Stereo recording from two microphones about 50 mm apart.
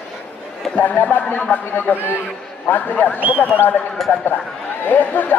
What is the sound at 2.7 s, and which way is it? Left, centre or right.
Speech, left.